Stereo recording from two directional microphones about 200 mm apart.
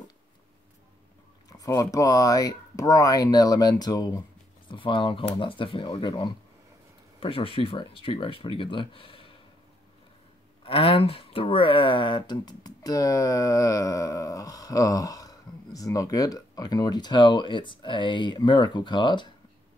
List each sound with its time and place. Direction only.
1.6 s speech: 20° left (ahead or behind)
10.6 s speech: 30° left (ahead or behind)